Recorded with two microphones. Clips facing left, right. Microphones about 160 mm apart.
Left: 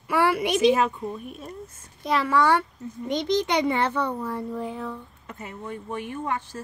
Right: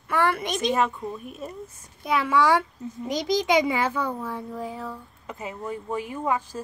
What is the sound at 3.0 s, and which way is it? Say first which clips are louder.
Speech: left 1 dB; 90° right.